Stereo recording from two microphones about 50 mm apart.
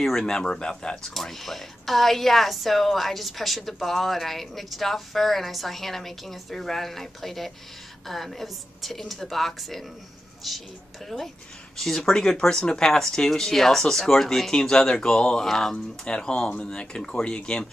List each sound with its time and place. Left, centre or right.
0.0 s a woman's voice: centre
11.7 s speech: centre